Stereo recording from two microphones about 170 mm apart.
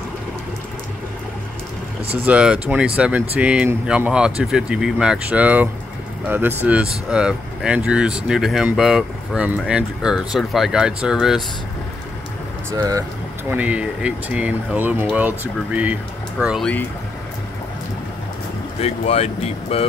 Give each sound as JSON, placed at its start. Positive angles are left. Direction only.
{"t": 2.0, "sound": "speech", "side_deg": -5}
{"t": 12.7, "sound": "speech", "side_deg": -20}
{"t": 13.5, "sound": "speech", "side_deg": -10}
{"t": 18.8, "sound": "speech", "side_deg": 40}